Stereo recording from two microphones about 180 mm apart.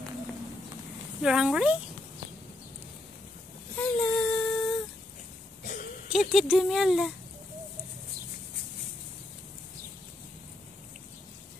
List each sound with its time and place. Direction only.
1.2 s speech: 5° right (ahead or behind)
3.7 s child singing: 5° left (ahead or behind)
6.1 s speech: centre (ahead or behind)